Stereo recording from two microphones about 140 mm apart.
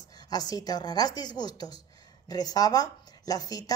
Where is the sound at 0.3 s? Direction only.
30° left (ahead or behind).